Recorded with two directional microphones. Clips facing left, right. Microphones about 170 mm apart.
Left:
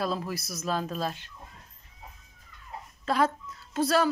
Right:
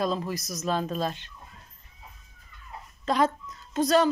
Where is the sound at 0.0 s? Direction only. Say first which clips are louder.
Right 2 dB; 5° left (ahead or behind).